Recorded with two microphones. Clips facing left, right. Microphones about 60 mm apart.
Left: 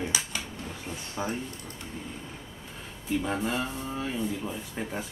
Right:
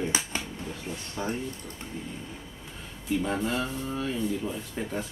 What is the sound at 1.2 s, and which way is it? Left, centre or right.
Speech, centre.